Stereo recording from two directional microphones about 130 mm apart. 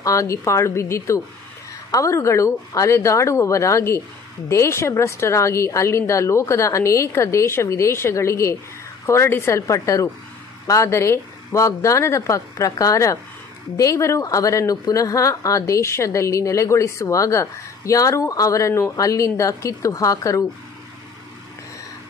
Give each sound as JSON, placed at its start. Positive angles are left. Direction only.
{"t": 0.0, "sound": "speech", "side_deg": 25}